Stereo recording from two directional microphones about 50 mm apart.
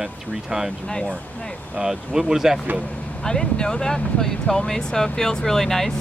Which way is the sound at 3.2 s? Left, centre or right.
Centre.